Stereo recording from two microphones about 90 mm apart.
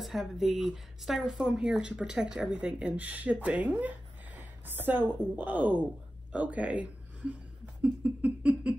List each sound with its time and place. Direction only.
0.0 s a woman's voice: centre (ahead or behind)